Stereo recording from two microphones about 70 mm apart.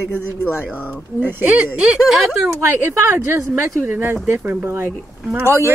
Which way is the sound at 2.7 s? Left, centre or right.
Right.